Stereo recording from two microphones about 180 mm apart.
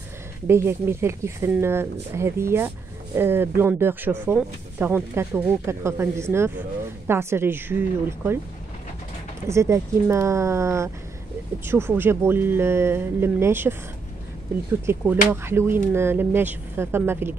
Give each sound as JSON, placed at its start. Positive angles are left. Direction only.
{"t": 0.5, "sound": "speech", "side_deg": -15}
{"t": 9.5, "sound": "speech", "side_deg": -15}
{"t": 14.9, "sound": "speech", "side_deg": -15}